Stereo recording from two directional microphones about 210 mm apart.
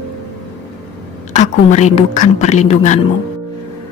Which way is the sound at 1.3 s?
35° left (ahead or behind).